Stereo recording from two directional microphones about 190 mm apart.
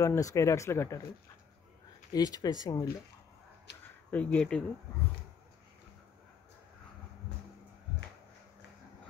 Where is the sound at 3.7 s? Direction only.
65° left (ahead or behind).